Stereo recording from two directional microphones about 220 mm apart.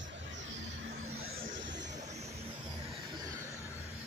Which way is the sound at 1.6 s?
55° right (ahead or behind).